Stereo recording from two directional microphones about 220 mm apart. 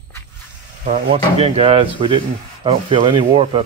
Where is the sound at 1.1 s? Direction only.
25° right (ahead or behind).